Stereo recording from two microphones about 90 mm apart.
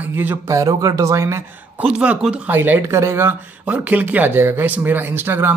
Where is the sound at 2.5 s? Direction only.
25° right (ahead or behind).